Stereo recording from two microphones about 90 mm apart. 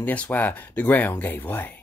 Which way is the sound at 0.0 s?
15° left (ahead or behind).